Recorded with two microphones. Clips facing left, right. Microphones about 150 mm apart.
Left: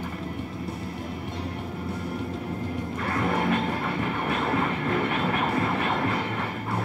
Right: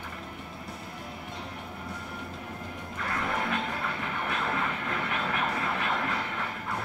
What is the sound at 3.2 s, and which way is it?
Music, 40° left (ahead or behind).